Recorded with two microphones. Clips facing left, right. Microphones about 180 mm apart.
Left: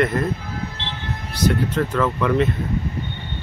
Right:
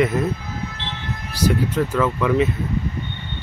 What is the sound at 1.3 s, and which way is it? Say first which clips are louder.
Speech: even; 10° right (ahead or behind).